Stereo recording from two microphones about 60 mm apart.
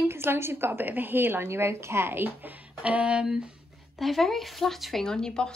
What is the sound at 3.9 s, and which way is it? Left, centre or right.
Speech, centre.